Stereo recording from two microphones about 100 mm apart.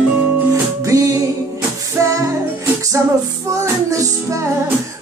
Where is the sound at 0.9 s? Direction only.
35° right (ahead or behind).